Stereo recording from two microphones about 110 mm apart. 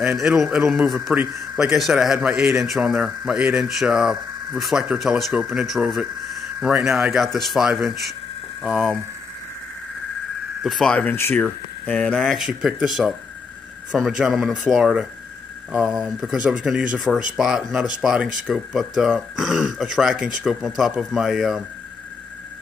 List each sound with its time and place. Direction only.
0.0 s a man's voice: 5° right (ahead or behind)
1.7 s a man's voice: centre (ahead or behind)
10.6 s a man's voice: centre (ahead or behind)
11.0 s speech: 20° left (ahead or behind)
12.2 s a man's voice: centre (ahead or behind)